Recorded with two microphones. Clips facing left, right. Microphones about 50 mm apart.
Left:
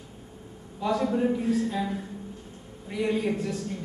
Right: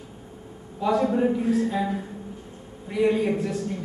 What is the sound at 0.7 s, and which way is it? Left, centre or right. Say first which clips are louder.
A man's voice: right 4 dB; centre.